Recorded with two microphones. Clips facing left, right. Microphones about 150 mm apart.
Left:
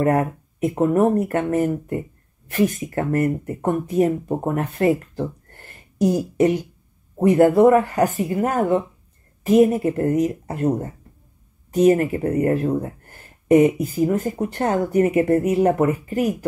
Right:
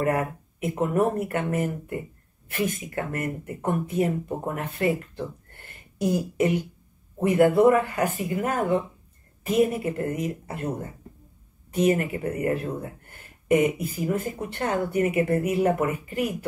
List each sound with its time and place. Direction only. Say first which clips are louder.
0.0 s speech: left 6 dB; 40° left (ahead or behind)